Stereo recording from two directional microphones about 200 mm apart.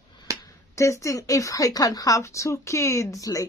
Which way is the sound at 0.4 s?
15° left (ahead or behind).